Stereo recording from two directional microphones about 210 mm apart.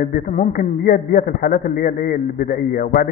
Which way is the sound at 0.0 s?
40° left (ahead or behind).